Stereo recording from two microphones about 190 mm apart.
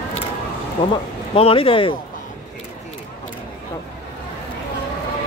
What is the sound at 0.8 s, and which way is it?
Speech, 25° left (ahead or behind).